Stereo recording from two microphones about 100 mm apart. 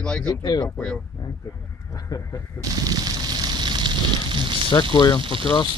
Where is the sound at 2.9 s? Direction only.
45° right (ahead or behind).